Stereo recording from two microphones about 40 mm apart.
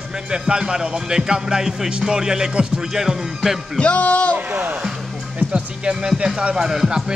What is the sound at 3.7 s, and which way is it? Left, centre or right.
Speech, left.